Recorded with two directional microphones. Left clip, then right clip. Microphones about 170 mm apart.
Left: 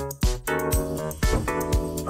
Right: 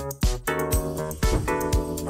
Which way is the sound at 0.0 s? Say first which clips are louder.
Right 1 dB; centre (ahead or behind).